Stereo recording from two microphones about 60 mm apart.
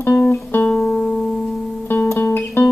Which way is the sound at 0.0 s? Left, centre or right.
Left.